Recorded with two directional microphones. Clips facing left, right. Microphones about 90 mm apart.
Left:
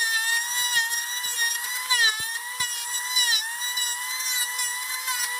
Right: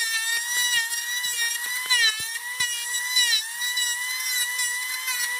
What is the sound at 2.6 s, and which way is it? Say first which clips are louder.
Air horn: right 1 dB; 45° left (ahead or behind).